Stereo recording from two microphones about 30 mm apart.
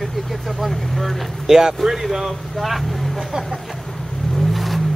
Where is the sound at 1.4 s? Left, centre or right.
Centre.